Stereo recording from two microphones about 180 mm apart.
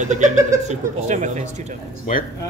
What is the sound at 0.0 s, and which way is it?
A man's voice, 40° right (ahead or behind).